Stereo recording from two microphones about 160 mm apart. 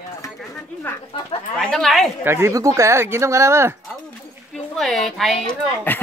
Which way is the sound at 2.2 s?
15° right (ahead or behind).